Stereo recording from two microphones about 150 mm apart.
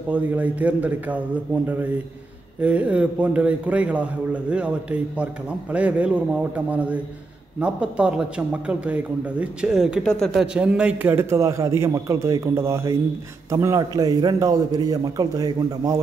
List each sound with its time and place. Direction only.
0.1 s a man's voice: 10° right (ahead or behind)